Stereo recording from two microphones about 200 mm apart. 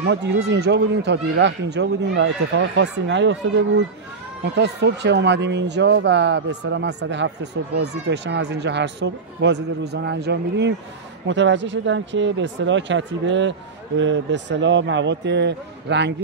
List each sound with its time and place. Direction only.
0.0 s speech: 60° right (ahead or behind)